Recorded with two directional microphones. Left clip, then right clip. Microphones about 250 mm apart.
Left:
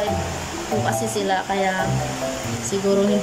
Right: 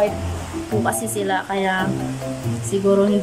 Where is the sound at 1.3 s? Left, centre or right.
Centre.